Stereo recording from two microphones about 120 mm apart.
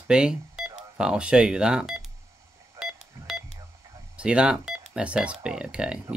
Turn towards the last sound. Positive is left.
turn(degrees=-10)  # may be behind; listen again after turning